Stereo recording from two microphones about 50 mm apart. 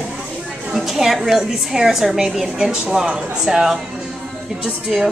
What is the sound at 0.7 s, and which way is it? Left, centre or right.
A woman's voice, centre.